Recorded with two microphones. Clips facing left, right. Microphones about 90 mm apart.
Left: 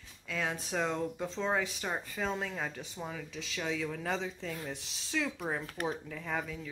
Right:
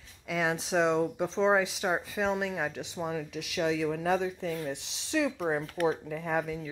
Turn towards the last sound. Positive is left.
turn(degrees=-15)  # may be behind; listen again after turning